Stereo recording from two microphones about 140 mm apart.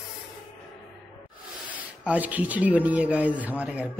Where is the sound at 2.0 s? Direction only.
10° right (ahead or behind).